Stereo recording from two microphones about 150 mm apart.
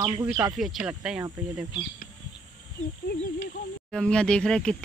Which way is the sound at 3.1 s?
90° left.